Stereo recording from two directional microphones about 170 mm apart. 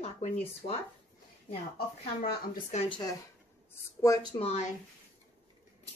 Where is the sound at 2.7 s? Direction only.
30° left (ahead or behind).